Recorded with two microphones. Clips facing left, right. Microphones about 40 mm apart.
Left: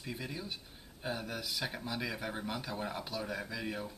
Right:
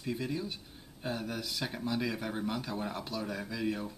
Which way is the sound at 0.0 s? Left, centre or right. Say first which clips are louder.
Right 6 dB; centre.